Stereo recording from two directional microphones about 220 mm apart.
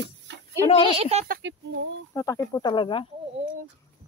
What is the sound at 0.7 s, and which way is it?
Speech, 25° left (ahead or behind).